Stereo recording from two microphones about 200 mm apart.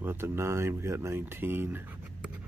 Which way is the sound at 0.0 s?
10° right (ahead or behind).